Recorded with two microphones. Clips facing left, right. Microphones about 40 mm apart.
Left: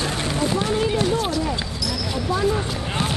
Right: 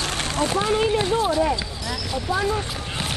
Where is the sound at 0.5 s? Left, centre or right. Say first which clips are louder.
Right 3 dB; right.